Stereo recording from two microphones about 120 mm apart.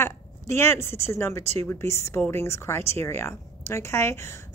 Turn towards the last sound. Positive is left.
turn(degrees=20)  # may be behind; listen again after turning